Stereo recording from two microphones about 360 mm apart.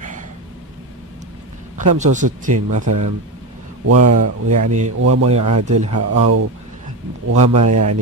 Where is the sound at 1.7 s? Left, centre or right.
Right.